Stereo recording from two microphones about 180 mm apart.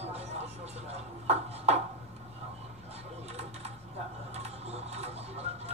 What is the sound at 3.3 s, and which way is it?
Typing, 35° right (ahead or behind).